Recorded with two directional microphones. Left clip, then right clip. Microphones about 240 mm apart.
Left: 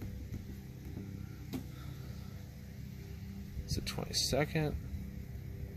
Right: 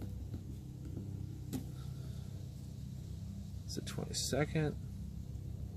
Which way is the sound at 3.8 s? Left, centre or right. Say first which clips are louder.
Left 6 dB; centre.